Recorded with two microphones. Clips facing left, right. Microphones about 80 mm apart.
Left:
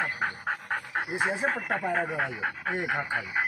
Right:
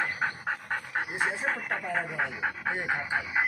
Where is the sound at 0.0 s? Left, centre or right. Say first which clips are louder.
Even; centre.